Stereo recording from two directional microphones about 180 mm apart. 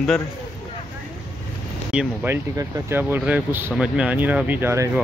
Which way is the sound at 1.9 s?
10° right (ahead or behind).